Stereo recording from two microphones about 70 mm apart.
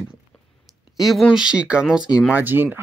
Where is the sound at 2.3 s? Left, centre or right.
Right.